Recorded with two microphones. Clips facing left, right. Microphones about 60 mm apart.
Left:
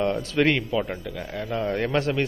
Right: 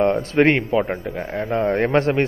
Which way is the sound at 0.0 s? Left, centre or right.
Right.